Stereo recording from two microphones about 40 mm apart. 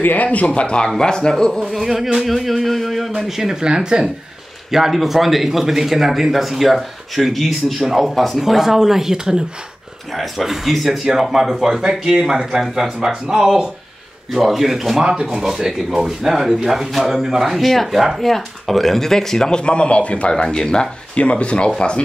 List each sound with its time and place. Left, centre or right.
0.0 s speech: left
0.6 s speech: left
1.3 s speech: centre
3.2 s speech: centre
3.6 s speech: right
4.6 s speech: centre
8.4 s speech: centre
10.4 s speech: centre
17.6 s speech: centre
21.1 s speech: left